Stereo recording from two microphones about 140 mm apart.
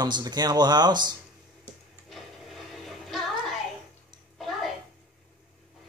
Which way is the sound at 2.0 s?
Centre (ahead or behind).